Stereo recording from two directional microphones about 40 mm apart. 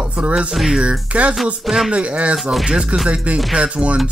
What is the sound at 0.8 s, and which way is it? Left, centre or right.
Speech, right.